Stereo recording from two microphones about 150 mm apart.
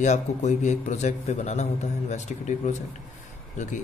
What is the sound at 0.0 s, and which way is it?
A man's voice, 50° left (ahead or behind).